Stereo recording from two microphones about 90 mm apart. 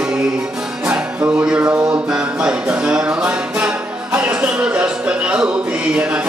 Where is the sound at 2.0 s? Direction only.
10° right (ahead or behind).